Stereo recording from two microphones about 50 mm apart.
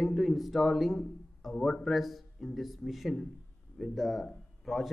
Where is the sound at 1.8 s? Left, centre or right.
Centre.